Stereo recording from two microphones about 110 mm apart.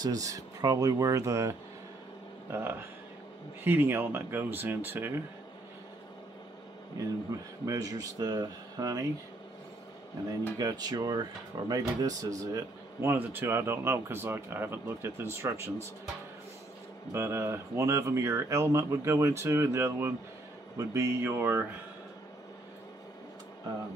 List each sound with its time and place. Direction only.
0.0 s speech: 35° right (ahead or behind)
2.5 s speech: 20° right (ahead or behind)
7.3 s speech: 30° right (ahead or behind)
10.6 s speech: 35° right (ahead or behind)
17.1 s speech: 25° right (ahead or behind)